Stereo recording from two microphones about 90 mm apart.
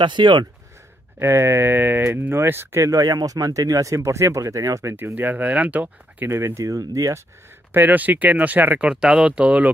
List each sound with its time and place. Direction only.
0.0 s speech: 60° right (ahead or behind)
1.2 s speech: 30° right (ahead or behind)
2.9 s speech: 45° right (ahead or behind)
4.9 s speech: 20° right (ahead or behind); by 7.2 s 40° right (ahead or behind)
7.7 s speech: 20° right (ahead or behind)